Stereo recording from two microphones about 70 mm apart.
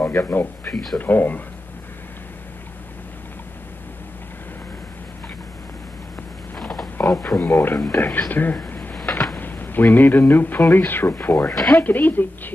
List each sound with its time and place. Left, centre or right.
0.0 s speech: left
6.6 s a sound: centre
7.2 s speech: centre
7.5 s speech: left
8.6 s a sound: left
9.4 s a man's voice: left